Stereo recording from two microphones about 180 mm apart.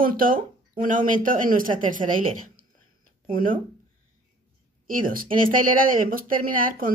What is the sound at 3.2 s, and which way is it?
Speech, 50° right (ahead or behind).